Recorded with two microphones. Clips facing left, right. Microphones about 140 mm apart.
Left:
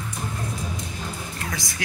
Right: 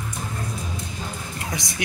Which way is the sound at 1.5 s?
20° right (ahead or behind).